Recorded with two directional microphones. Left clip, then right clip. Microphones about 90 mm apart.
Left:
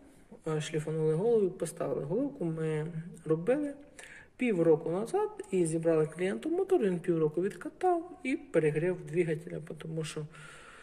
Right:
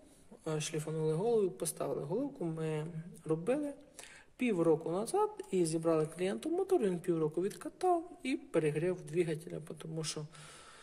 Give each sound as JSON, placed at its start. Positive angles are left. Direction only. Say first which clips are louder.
{"t": 0.5, "sound": "speech", "louder": "left 4 dB", "side_deg": -20}
{"t": 1.8, "sound": "speech", "louder": "left 4 dB", "side_deg": -5}
{"t": 2.6, "sound": "speech", "louder": "left 4 dB", "side_deg": -25}
{"t": 6.2, "sound": "speech", "louder": "left 3 dB", "side_deg": -25}